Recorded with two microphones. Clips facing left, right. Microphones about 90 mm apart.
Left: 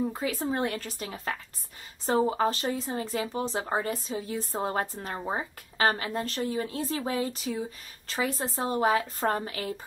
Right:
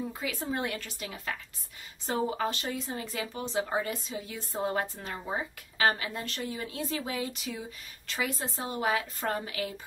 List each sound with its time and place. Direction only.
0.1 s speech: 40° left (ahead or behind)